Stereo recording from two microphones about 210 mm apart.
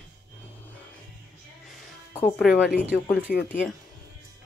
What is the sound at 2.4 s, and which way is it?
Speech, centre (ahead or behind).